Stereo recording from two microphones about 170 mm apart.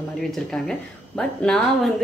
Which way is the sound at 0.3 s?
Centre (ahead or behind).